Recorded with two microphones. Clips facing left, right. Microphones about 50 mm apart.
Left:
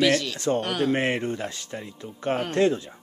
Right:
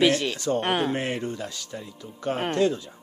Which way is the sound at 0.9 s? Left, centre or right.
Left.